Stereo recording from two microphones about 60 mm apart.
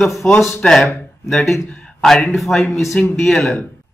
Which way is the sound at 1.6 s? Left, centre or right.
Centre.